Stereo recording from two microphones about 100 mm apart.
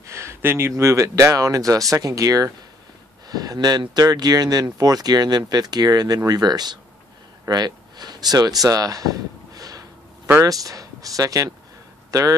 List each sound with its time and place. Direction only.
0.0 s speech: 30° right (ahead or behind)
8.6 s a sound: 35° right (ahead or behind)
10.4 s speech: 35° right (ahead or behind)